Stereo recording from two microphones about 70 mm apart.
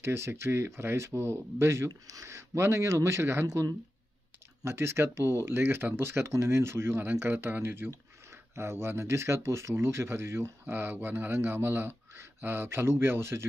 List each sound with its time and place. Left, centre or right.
0.0 s speech: right
1.9 s speech: right
4.6 s speech: right